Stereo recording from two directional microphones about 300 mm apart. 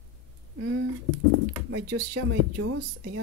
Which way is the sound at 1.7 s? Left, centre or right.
Right.